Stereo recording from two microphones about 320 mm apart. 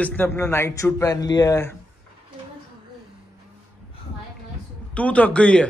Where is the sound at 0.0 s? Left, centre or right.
Centre.